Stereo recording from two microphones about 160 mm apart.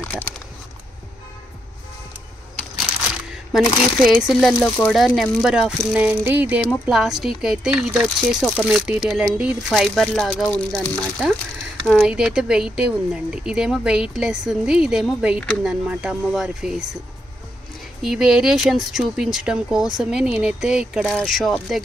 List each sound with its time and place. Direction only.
3.3 s speech: centre (ahead or behind)
12.0 s speech: 5° right (ahead or behind)
18.0 s speech: 5° right (ahead or behind)